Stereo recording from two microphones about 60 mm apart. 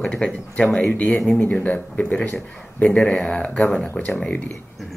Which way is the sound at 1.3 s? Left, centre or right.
Left.